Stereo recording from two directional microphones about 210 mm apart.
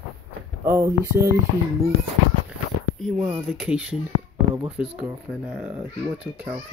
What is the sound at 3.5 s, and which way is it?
A child's voice, 5° right (ahead or behind).